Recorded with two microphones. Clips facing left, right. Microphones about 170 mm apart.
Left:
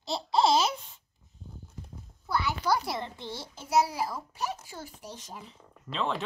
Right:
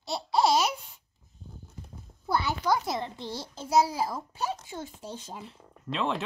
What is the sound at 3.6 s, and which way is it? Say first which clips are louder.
A child's voice: right 2 dB; 30° right (ahead or behind).